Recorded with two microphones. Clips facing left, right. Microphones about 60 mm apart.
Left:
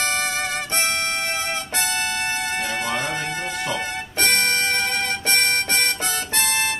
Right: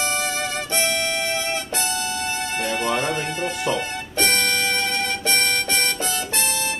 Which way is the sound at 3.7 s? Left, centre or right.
Left.